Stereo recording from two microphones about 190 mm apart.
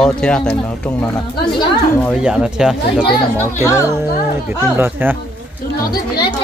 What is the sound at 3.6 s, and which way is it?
Speech, 15° left (ahead or behind).